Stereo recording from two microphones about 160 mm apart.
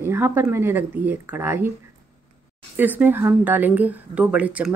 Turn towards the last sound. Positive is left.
turn(degrees=-10)  # may be behind; listen again after turning